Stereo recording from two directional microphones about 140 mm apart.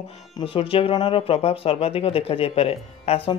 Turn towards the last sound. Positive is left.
turn(degrees=45)  # may be behind; listen again after turning